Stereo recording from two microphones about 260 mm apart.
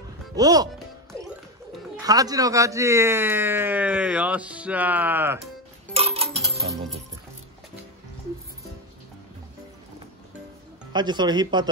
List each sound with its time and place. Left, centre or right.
0.4 s speech: centre
2.0 s speech: centre
5.9 s a sound: right
10.9 s speech: centre